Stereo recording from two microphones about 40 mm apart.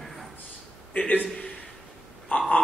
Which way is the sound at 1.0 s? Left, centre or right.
Left.